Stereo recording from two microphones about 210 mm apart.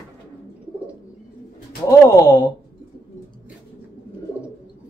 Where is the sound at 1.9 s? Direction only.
10° left (ahead or behind).